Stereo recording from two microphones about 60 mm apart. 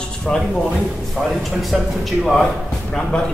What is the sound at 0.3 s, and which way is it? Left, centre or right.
A man's voice, centre.